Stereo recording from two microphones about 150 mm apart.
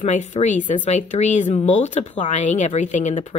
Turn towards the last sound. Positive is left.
turn(degrees=55)  # may be behind; listen again after turning